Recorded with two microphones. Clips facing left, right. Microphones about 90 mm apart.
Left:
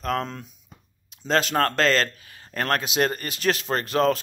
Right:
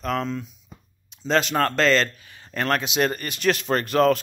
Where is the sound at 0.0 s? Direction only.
40° left (ahead or behind).